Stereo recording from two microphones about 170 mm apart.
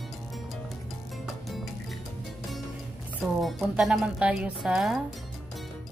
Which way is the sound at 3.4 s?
Centre (ahead or behind).